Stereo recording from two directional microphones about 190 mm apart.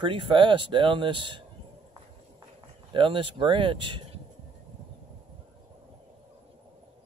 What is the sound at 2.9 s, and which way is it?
Speech, 25° right (ahead or behind).